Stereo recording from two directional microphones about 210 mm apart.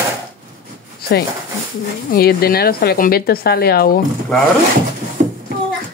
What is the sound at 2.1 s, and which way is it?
Speech, 45° left (ahead or behind).